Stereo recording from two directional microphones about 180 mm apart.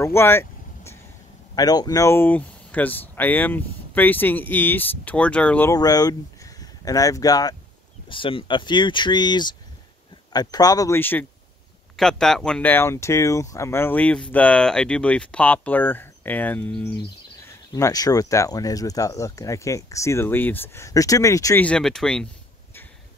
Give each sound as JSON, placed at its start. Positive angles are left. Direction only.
{"t": 0.0, "sound": "vehicle", "side_deg": 15}
{"t": 1.5, "sound": "speech", "side_deg": 20}
{"t": 5.8, "sound": "speech", "side_deg": 20}
{"t": 17.7, "sound": "speech", "side_deg": 20}
{"t": 21.6, "sound": "speech", "side_deg": 5}